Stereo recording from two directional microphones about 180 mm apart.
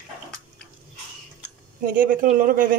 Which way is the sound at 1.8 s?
50° right (ahead or behind).